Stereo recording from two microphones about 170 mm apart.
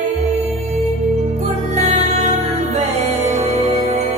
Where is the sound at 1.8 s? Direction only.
40° right (ahead or behind).